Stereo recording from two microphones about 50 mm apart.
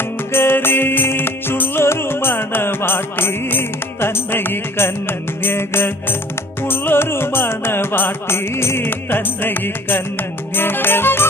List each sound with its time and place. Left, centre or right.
0.3 s music: left